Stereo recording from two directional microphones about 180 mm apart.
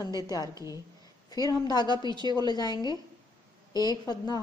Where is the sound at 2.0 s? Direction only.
25° right (ahead or behind).